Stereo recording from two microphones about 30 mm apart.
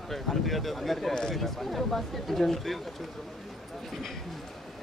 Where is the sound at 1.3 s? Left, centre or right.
Centre.